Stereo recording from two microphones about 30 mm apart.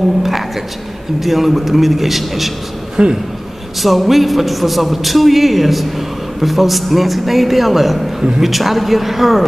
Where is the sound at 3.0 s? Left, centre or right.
Right.